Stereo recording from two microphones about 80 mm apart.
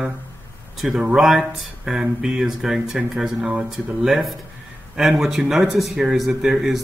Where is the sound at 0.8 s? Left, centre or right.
Centre.